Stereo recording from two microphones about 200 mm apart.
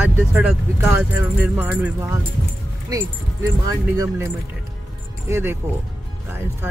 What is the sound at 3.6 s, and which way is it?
Speech, 15° right (ahead or behind).